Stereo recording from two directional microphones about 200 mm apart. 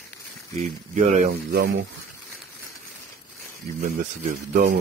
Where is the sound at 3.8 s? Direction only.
40° right (ahead or behind).